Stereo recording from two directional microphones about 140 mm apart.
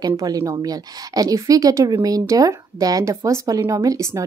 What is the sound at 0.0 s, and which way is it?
Speech, 25° right (ahead or behind).